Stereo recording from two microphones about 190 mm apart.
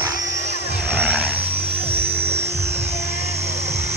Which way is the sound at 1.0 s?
10° right (ahead or behind).